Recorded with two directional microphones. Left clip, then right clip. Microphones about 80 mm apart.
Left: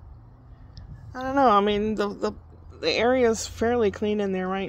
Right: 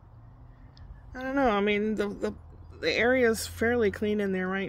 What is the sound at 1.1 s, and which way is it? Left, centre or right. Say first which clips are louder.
A woman's voice: left 7 dB; centre.